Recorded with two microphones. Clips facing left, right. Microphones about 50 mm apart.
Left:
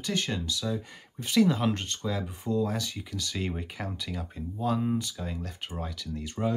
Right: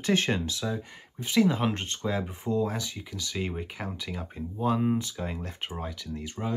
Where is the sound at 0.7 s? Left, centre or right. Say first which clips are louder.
Left 1 dB; right.